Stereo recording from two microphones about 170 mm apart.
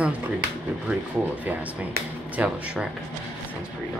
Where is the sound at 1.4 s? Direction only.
10° right (ahead or behind).